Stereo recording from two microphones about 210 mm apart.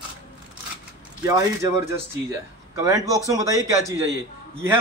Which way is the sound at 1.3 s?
15° right (ahead or behind).